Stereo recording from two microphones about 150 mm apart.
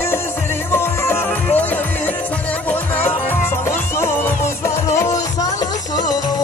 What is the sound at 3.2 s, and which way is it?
Music, 15° left (ahead or behind).